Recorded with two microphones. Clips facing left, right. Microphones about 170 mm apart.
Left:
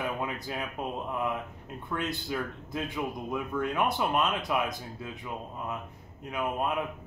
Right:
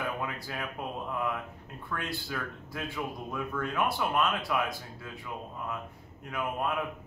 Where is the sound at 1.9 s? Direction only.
20° left (ahead or behind).